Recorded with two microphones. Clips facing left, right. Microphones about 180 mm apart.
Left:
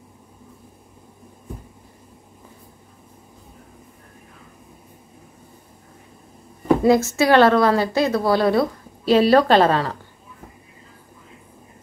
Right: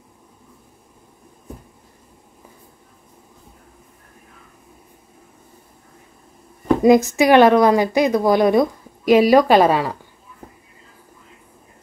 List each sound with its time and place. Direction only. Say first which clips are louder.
6.8 s a woman's voice: right 6 dB; 15° right (ahead or behind)